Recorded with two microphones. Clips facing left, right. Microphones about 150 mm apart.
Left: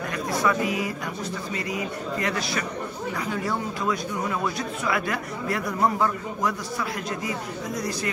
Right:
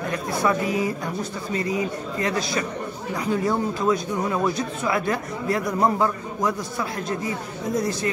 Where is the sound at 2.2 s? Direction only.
30° right (ahead or behind).